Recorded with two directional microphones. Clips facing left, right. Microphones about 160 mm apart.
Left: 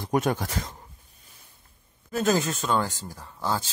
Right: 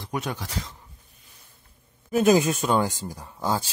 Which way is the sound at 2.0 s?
15° right (ahead or behind).